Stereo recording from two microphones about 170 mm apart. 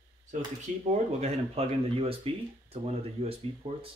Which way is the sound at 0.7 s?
50° right (ahead or behind).